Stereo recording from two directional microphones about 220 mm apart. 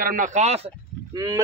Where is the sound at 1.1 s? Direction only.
15° right (ahead or behind).